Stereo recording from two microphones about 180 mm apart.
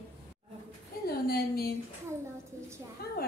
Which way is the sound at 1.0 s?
60° left (ahead or behind).